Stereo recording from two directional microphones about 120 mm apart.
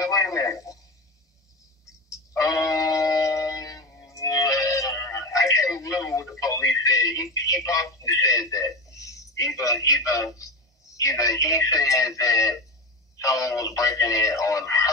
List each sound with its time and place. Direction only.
0.0 s radio: 25° left (ahead or behind)
2.0 s music: 30° left (ahead or behind)
11.0 s speech: 25° left (ahead or behind)